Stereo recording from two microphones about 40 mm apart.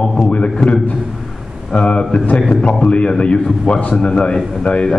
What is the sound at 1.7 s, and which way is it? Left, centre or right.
A man's voice, left.